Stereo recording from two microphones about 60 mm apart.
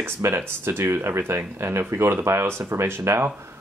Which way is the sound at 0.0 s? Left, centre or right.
Right.